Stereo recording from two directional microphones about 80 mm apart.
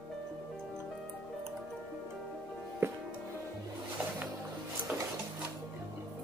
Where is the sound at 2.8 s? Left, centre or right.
Right.